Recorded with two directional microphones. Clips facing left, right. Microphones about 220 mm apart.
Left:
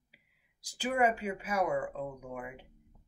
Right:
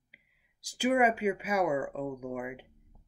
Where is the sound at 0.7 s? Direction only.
15° right (ahead or behind).